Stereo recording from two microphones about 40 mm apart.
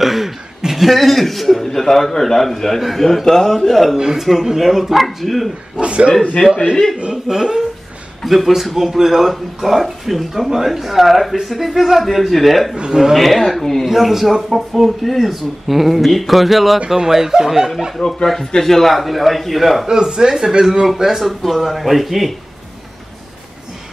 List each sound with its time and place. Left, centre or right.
0.0 s a sound: centre
0.6 s speech: centre
3.9 s speech: centre
5.8 s a man's voice: right
6.4 s speech: centre
7.2 s speech: centre
8.2 s speech: centre
12.7 s speech: centre
13.1 s speech: centre
13.8 s speech: centre
17.9 s speech: centre
19.9 s speech: centre